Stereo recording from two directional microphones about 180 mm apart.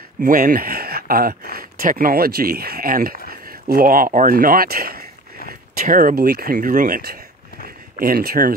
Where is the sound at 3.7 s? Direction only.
50° right (ahead or behind).